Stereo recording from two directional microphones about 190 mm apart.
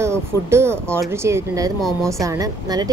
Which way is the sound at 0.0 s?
15° right (ahead or behind).